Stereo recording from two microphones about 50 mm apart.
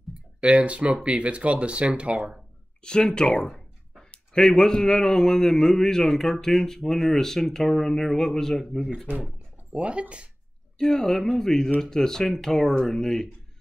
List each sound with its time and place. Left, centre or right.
0.4 s speech: right
2.8 s speech: centre
3.5 s a sound: centre
4.7 s speech: centre
9.8 s speech: right
10.8 s speech: centre